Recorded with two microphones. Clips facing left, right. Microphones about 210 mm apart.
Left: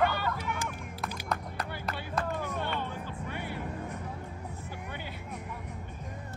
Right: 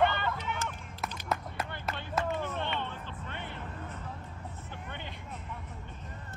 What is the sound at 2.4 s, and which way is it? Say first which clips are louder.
Music: left 1 dB; 10° left (ahead or behind).